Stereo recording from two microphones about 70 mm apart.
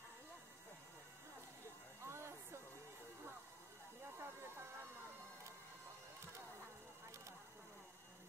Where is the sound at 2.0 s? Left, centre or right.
Right.